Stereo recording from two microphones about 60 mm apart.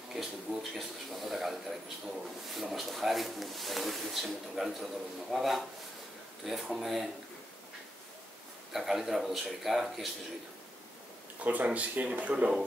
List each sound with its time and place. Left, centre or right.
0.1 s a sound: centre
2.5 s speech: centre
8.7 s speech: centre
11.4 s speech: right